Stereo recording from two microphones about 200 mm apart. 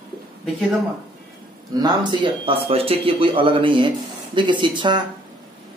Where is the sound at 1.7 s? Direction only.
20° right (ahead or behind).